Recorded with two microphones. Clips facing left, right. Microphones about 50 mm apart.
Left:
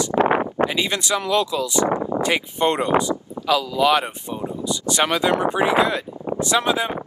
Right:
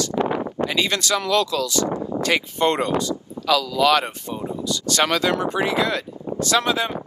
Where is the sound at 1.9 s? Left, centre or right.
Left.